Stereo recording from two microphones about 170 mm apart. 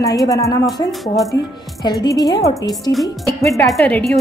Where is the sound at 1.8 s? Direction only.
20° left (ahead or behind).